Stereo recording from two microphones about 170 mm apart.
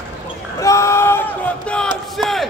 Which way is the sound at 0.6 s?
15° left (ahead or behind).